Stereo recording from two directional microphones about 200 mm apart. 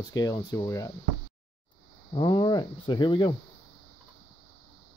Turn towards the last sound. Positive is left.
turn(degrees=25)  # may be behind; listen again after turning